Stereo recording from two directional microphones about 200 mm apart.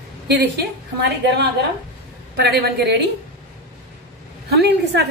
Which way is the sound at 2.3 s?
55° right (ahead or behind).